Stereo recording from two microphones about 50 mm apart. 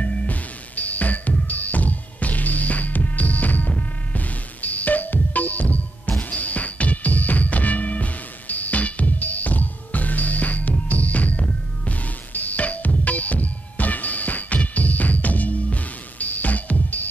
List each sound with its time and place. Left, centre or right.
0.0 s music: left